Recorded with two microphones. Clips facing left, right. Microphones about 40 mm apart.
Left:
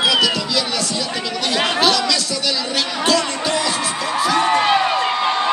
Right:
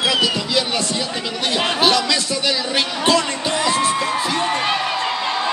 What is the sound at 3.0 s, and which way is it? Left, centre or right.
Music, right.